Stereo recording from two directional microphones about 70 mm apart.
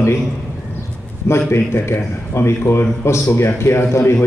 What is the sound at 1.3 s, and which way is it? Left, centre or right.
A man's voice, left.